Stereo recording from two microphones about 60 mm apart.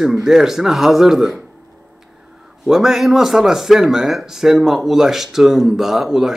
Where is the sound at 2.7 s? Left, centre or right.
Centre.